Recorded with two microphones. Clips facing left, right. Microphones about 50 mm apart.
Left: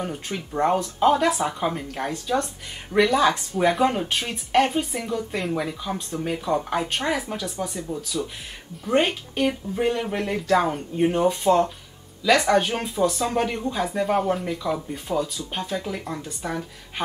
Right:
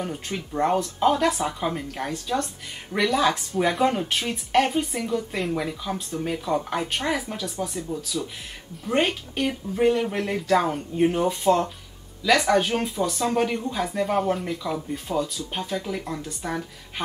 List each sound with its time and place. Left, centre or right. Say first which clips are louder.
0.0 s speech: left 1 dB; centre